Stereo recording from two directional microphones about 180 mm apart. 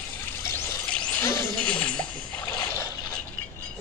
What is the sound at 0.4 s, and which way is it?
Pour, 10° left (ahead or behind).